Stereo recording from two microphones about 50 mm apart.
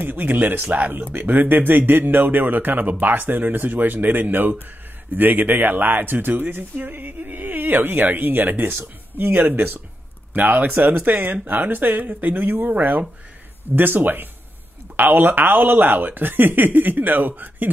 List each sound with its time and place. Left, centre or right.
0.0 s speech: right